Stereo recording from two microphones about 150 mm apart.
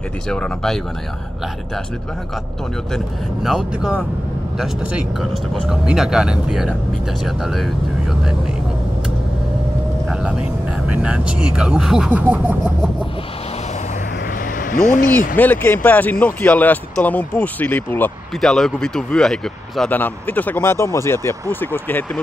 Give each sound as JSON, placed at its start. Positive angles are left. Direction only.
{"t": 0.3, "sound": "speech", "side_deg": 5}
{"t": 3.4, "sound": "speech", "side_deg": -5}
{"t": 5.5, "sound": "speech", "side_deg": 0}
{"t": 10.9, "sound": "speech", "side_deg": -10}
{"t": 14.7, "sound": "speech", "side_deg": 60}
{"t": 15.1, "sound": "speech", "side_deg": 10}